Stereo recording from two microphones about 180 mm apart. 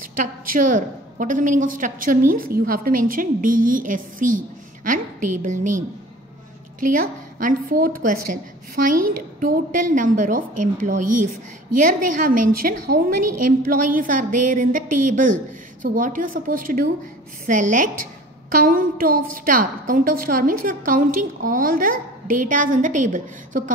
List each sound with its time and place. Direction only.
0.1 s a woman's voice: 50° right (ahead or behind)
6.8 s a woman's voice: 50° right (ahead or behind)